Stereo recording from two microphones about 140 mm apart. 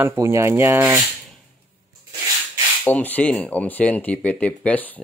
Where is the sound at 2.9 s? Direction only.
10° left (ahead or behind).